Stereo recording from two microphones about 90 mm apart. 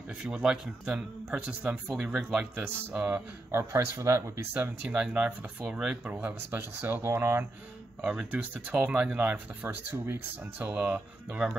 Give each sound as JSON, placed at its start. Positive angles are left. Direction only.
{"t": 0.2, "sound": "speech", "side_deg": -10}
{"t": 3.5, "sound": "speech", "side_deg": -35}
{"t": 4.6, "sound": "speech", "side_deg": -15}
{"t": 8.0, "sound": "speech", "side_deg": -10}